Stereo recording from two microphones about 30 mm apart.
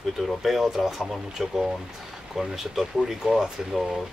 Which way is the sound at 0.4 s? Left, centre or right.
Centre.